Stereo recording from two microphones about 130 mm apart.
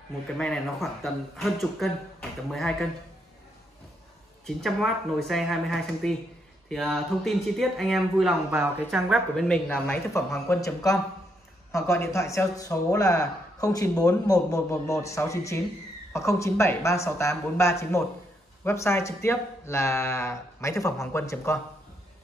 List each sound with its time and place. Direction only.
0.4 s speech: 5° left (ahead or behind)
4.5 s speech: 5° left (ahead or behind)
9.7 s speech: 20° left (ahead or behind)